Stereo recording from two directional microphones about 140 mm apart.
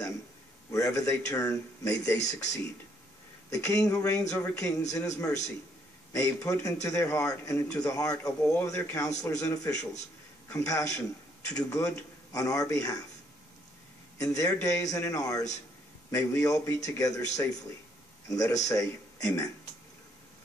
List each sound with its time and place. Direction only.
0.7 s a man's voice: 20° left (ahead or behind)
14.1 s a man's voice: 25° left (ahead or behind)